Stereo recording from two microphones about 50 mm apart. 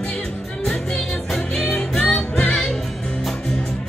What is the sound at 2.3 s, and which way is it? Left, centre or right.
Music, left.